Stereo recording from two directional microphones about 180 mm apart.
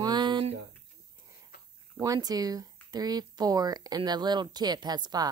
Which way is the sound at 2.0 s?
20° right (ahead or behind).